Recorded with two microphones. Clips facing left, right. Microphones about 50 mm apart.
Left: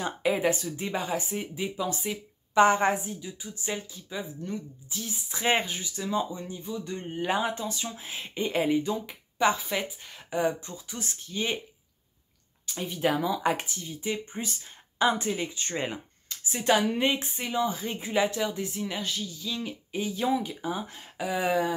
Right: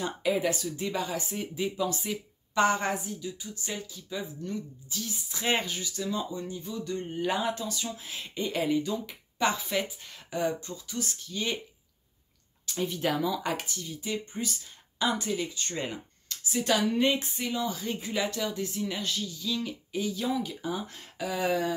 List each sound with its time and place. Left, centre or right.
0.0 s a woman's voice: left
1.3 s a woman's voice: centre
9.4 s speech: centre
12.6 s a woman's voice: centre